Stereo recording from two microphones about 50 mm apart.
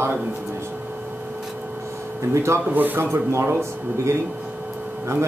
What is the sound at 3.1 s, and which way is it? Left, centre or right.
Speech, right.